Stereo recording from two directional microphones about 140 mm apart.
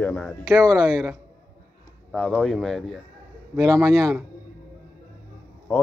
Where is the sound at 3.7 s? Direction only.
25° right (ahead or behind).